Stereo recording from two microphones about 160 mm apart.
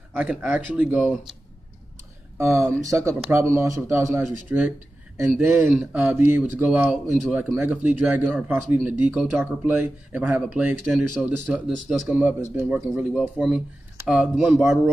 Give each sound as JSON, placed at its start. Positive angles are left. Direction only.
{"t": 0.1, "sound": "speech", "side_deg": -10}
{"t": 2.3, "sound": "speech", "side_deg": -20}
{"t": 5.7, "sound": "speech", "side_deg": -5}